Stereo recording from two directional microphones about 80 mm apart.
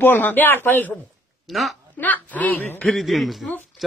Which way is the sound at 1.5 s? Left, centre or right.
Centre.